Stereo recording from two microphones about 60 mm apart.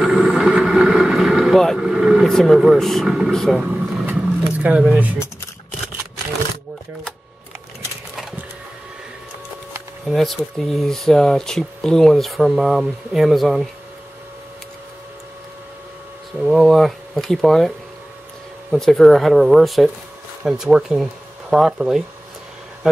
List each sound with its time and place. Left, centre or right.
0.0 s vehicle: centre
2.2 s speech: centre
4.0 s roaring cats: right
10.0 s speech: centre
16.3 s speech: centre